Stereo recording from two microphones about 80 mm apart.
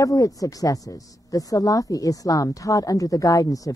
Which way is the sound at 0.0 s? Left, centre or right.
Left.